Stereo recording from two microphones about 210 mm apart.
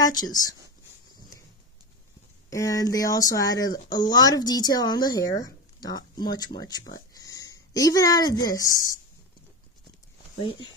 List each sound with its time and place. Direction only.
0.0 s speech: 20° left (ahead or behind)
2.5 s speech: 15° left (ahead or behind)